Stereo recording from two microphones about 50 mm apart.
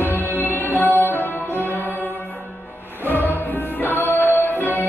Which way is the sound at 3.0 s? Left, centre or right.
Left.